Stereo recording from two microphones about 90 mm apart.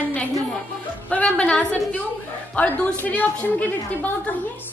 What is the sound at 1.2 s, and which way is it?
A woman's voice, 15° left (ahead or behind).